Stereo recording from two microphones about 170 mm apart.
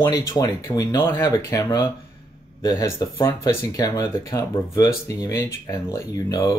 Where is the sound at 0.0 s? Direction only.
25° left (ahead or behind).